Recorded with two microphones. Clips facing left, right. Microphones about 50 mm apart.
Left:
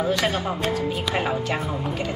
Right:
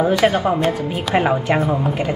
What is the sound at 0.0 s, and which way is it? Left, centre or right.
Speech, right.